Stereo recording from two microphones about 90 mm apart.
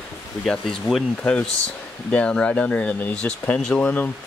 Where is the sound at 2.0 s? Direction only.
10° left (ahead or behind).